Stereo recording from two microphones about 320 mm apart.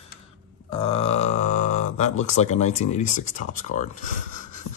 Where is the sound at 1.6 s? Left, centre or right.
Left.